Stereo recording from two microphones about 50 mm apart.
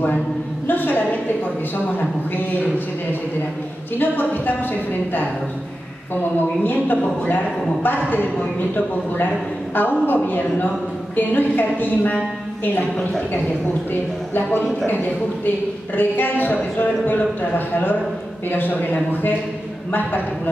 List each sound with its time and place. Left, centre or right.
0.7 s a woman's voice: left
4.0 s a woman's voice: left
6.4 s a woman's voice: left
14.3 s a woman's voice: left
16.0 s a woman's voice: left